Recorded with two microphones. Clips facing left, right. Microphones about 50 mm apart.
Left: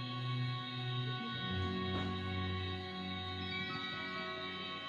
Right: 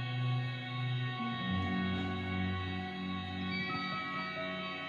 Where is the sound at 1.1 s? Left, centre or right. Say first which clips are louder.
Right 8 dB; right.